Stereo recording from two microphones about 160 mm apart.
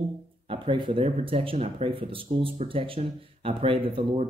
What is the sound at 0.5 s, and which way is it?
Speech, 30° right (ahead or behind).